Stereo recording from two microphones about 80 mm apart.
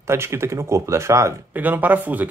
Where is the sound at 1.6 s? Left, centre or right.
Right.